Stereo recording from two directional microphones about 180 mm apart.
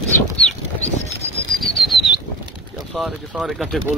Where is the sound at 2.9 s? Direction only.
Centre (ahead or behind).